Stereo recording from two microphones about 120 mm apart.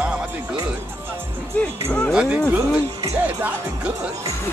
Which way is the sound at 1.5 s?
10° left (ahead or behind).